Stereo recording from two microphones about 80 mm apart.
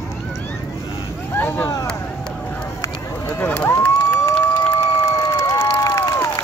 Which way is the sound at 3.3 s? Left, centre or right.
Left.